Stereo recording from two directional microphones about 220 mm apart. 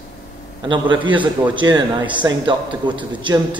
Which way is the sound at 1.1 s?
20° right (ahead or behind).